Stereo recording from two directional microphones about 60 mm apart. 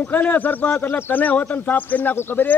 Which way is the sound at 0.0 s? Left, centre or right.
Left.